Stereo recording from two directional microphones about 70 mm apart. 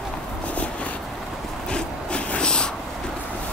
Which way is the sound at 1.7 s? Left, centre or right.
Centre.